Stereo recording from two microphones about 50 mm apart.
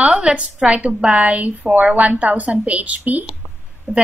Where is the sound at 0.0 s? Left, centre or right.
Right.